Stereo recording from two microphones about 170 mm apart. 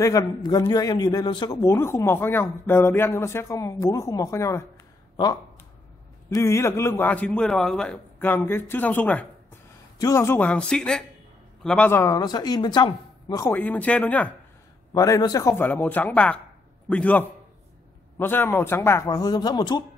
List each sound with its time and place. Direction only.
0.0 s a man's voice: 20° left (ahead or behind)
12.0 s speech: 20° left (ahead or behind)
15.0 s a man's voice: 20° left (ahead or behind)